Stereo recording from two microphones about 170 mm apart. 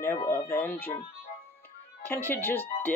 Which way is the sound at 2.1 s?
10° left (ahead or behind).